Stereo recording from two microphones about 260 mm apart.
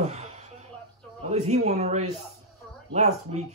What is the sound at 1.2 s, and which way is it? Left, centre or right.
A man's voice, right.